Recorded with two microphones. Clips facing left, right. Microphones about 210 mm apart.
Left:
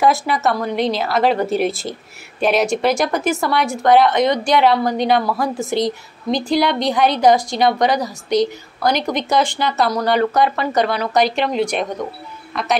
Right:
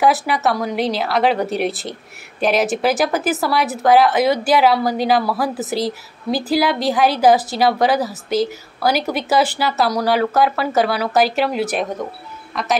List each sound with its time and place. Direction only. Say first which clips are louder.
0.0 s speech: even; centre (ahead or behind)